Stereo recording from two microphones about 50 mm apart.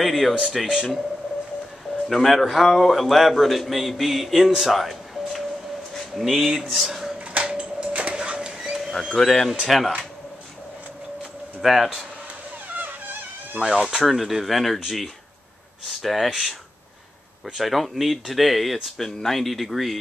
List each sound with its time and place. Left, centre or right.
0.0 s a man's voice: centre
2.0 s a man's voice: centre
7.4 s printer: right
9.1 s a man's voice: centre
11.6 s a man's voice: centre
12.7 s insect: right
13.6 s a man's voice: centre
15.9 s a man's voice: centre
17.6 s a man's voice: centre